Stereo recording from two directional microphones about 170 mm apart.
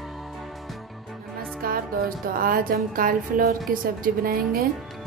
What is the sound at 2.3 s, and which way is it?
A woman's voice, 55° right (ahead or behind).